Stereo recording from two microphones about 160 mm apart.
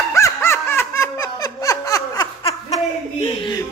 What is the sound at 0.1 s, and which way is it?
Snicker, 15° left (ahead or behind).